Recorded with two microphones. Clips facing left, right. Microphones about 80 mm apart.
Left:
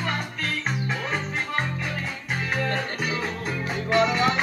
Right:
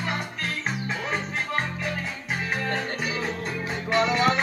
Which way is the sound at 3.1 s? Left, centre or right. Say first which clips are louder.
Left 1 dB; centre.